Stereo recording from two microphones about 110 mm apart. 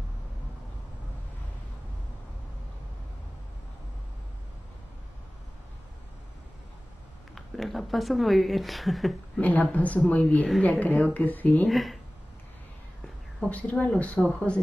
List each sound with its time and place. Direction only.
7.3 s speech: centre (ahead or behind)
9.4 s speech: 15° left (ahead or behind)
11.7 s speech: centre (ahead or behind)
13.5 s speech: 15° left (ahead or behind)